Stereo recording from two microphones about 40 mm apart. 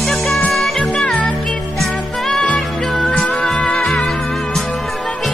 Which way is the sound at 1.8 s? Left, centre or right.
Centre.